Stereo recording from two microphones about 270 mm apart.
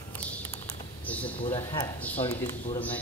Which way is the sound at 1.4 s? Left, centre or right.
Centre.